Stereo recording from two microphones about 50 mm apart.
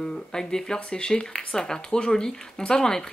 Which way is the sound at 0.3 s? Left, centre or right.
Centre.